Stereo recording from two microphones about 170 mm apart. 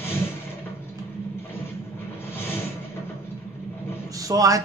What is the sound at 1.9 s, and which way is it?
Vehicle, 15° left (ahead or behind).